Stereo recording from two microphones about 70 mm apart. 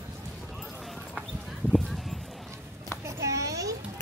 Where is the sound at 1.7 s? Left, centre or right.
Centre.